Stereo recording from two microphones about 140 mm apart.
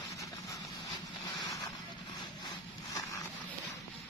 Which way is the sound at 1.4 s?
25° left (ahead or behind).